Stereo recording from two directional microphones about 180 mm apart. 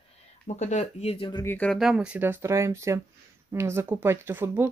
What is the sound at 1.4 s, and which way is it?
Speech, 10° left (ahead or behind).